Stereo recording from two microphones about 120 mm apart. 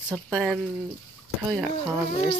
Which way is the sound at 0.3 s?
Centre (ahead or behind).